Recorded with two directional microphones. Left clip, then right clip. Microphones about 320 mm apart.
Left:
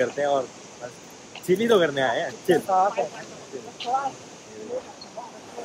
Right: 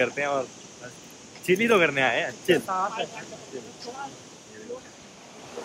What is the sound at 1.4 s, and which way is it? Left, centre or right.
Speech, centre.